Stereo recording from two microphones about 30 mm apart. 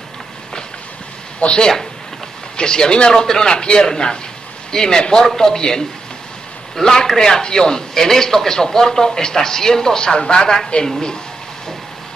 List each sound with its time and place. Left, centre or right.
1.4 s speech: left
2.5 s a man's voice: left